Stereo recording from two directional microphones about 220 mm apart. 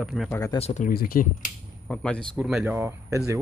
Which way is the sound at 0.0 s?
Centre (ahead or behind).